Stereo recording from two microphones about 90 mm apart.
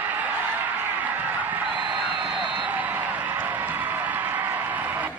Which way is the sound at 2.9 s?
20° right (ahead or behind).